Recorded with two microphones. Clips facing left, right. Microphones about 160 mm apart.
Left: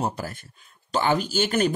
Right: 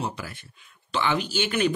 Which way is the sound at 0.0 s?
45° left (ahead or behind).